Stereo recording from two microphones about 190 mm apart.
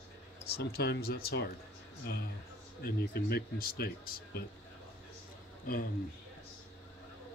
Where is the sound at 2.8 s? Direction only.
55° left (ahead or behind).